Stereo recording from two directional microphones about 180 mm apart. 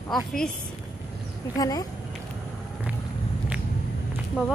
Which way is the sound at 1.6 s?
20° left (ahead or behind).